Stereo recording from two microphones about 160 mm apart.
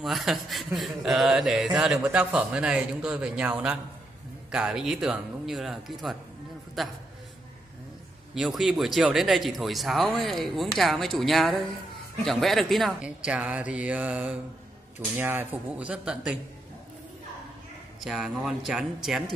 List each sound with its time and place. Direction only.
0.0 s speech: centre (ahead or behind)
8.4 s speech: centre (ahead or behind)
18.0 s speech: centre (ahead or behind)